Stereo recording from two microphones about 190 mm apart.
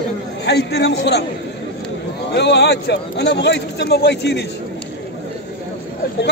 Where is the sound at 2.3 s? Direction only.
65° left (ahead or behind).